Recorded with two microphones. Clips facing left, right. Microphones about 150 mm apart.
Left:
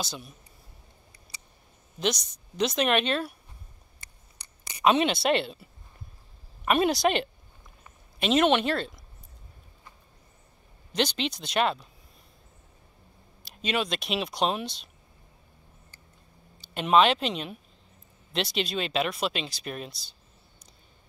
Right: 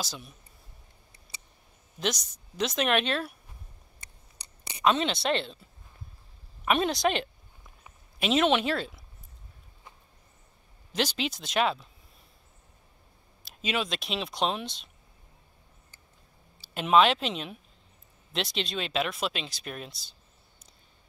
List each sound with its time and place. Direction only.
0.0 s speech: centre (ahead or behind)
2.0 s speech: centre (ahead or behind)
4.8 s speech: 10° left (ahead or behind)
10.9 s speech: 5° right (ahead or behind)
13.4 s speech: centre (ahead or behind)
16.6 s speech: centre (ahead or behind)